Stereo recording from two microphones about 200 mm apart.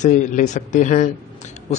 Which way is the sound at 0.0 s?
40° left (ahead or behind).